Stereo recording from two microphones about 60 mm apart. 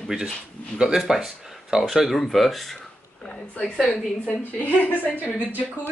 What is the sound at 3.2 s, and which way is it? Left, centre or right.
A woman's voice, centre.